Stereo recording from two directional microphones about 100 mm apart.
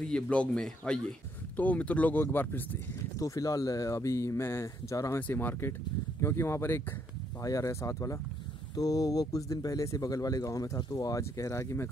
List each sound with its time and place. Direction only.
0.0 s speech: 10° left (ahead or behind)
3.2 s speech: 35° left (ahead or behind)
5.2 s speech: 20° left (ahead or behind)